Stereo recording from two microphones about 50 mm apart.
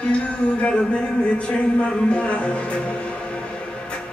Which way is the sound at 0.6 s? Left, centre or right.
Left.